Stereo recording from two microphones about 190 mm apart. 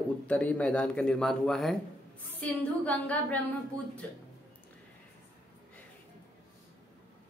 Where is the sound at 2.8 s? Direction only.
10° left (ahead or behind).